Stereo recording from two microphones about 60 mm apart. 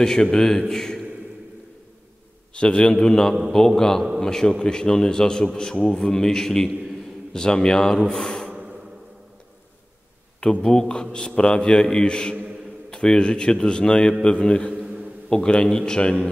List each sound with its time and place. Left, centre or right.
0.0 s a man's voice: centre
2.5 s a man's voice: centre
8.1 s gasp: centre
10.4 s a man's voice: centre